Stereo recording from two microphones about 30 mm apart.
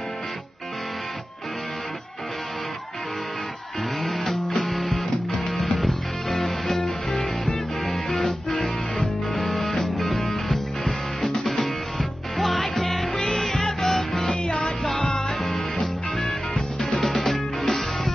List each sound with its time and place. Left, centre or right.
4.0 s music: centre
6.8 s music: centre
14.3 s music: left
14.9 s music: centre
16.2 s music: centre